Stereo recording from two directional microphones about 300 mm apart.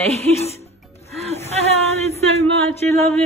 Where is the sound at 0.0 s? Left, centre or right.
Right.